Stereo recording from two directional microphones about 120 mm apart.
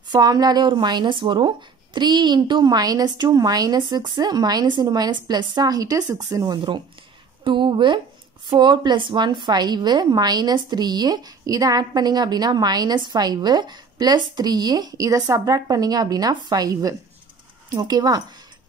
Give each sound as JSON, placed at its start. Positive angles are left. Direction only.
{"t": 0.1, "sound": "a woman's voice", "side_deg": -35}